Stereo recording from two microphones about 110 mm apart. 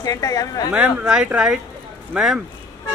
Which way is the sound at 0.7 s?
10° right (ahead or behind).